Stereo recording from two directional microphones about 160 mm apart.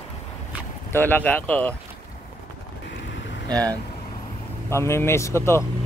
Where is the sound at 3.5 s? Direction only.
25° right (ahead or behind).